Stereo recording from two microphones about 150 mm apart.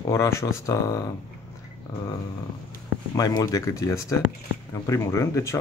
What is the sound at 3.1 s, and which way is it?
Speech, 25° left (ahead or behind).